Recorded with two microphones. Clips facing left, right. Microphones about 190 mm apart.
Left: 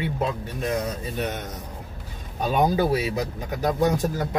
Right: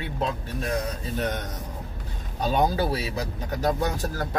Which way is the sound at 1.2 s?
5° left (ahead or behind).